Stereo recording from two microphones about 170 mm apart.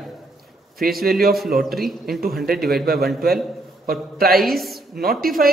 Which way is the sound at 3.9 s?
65° right (ahead or behind).